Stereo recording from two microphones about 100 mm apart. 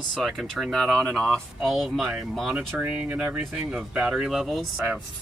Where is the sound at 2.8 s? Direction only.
20° right (ahead or behind).